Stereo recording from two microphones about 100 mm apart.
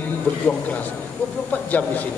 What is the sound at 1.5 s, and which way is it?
Speech, 15° left (ahead or behind).